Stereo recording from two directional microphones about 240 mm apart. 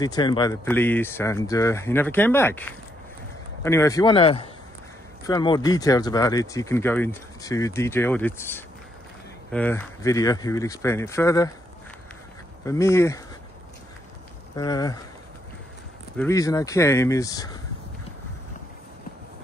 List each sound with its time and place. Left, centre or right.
0.0 s speech: centre
12.6 s speech: centre
14.5 s speech: centre
16.2 s speech: centre